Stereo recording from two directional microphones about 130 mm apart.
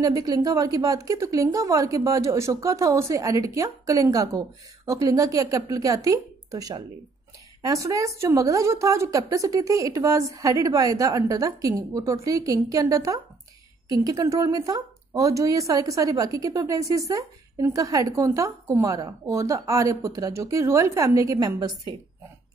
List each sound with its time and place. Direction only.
0.0 s speech: 30° right (ahead or behind)